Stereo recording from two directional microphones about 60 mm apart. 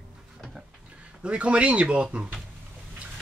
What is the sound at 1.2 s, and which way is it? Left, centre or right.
Speech, centre.